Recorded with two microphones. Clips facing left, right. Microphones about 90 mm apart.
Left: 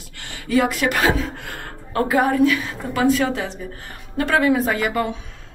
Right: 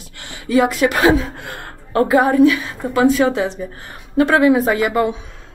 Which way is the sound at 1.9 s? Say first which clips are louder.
Right 6 dB; 35° right (ahead or behind).